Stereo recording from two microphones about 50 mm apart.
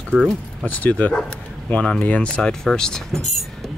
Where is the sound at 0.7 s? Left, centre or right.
Left.